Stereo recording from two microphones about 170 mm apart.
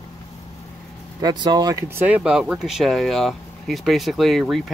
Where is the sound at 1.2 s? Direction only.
25° right (ahead or behind).